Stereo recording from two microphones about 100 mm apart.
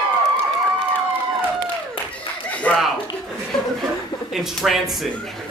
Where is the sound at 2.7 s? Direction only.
15° left (ahead or behind).